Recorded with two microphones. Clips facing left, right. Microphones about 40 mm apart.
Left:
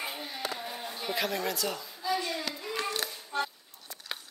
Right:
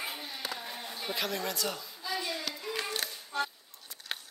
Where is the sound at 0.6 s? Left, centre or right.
Centre.